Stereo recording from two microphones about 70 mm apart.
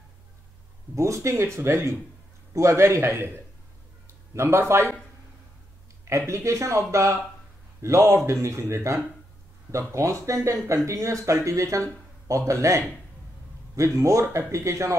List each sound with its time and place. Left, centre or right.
0.9 s a man's voice: right
4.4 s a man's voice: right
6.0 s a man's voice: right